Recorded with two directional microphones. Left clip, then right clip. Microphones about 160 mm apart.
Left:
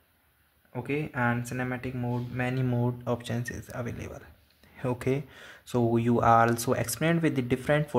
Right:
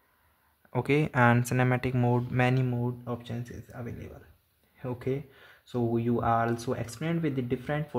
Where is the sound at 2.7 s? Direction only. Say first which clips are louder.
Left 4 dB; 5° left (ahead or behind).